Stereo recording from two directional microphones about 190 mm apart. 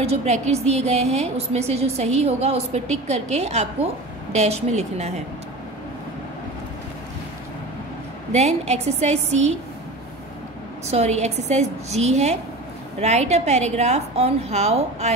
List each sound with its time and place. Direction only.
0.0 s a woman's voice: 35° right (ahead or behind)
8.3 s a woman's voice: 35° right (ahead or behind)
10.9 s a woman's voice: 35° right (ahead or behind)